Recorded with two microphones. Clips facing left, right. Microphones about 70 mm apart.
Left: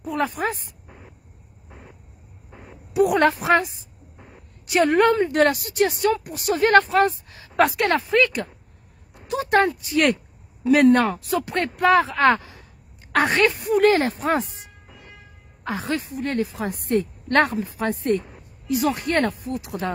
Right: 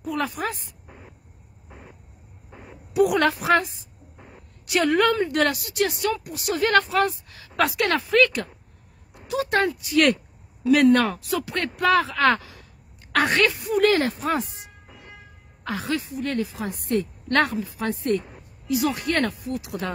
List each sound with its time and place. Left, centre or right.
0.0 s speech: left
2.9 s a woman's voice: left
9.3 s a woman's voice: left
15.6 s speech: left